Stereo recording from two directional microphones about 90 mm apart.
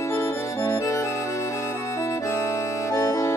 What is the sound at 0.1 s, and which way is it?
Music, 30° left (ahead or behind).